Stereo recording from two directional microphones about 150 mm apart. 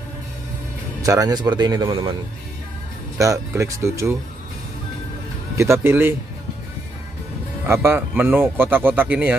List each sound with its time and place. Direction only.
1.0 s speech: 20° right (ahead or behind)
3.2 s speech: 20° right (ahead or behind)
5.6 s speech: 15° right (ahead or behind)
7.6 s speech: 15° right (ahead or behind)